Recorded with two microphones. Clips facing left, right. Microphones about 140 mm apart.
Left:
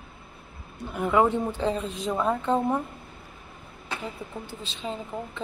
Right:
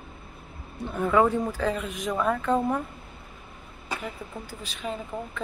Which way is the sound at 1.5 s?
25° left (ahead or behind).